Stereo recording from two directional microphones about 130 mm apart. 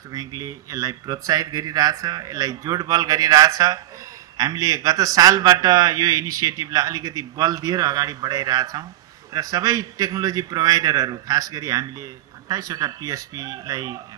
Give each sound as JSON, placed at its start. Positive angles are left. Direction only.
{"t": 0.1, "sound": "a man's voice", "side_deg": -25}